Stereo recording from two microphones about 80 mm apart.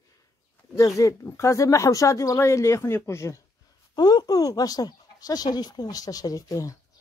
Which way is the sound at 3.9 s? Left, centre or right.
Left.